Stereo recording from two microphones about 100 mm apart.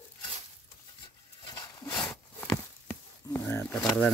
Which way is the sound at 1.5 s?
40° left (ahead or behind).